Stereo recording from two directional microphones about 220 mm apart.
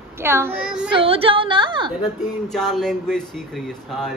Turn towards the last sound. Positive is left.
turn(degrees=0)  # may be behind; listen again after turning